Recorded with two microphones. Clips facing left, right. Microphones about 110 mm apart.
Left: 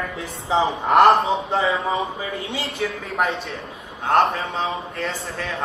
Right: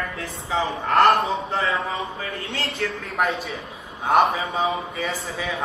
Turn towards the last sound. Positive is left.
turn(degrees=0)  # may be behind; listen again after turning